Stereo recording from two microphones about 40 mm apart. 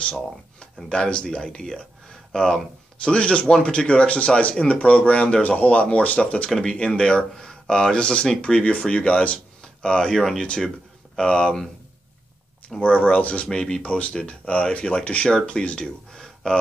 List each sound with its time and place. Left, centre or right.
0.1 s speech: centre
0.8 s speech: left
3.0 s speech: left
9.3 s a sound: left
10.1 s speech: centre
10.4 s speech: left
12.8 s speech: left
13.3 s speech: left
16.1 s a sound: centre